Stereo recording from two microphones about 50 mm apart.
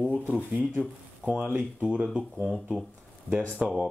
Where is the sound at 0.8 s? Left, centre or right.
Centre.